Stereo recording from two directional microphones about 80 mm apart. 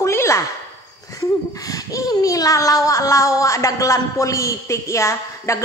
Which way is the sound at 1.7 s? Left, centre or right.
Left.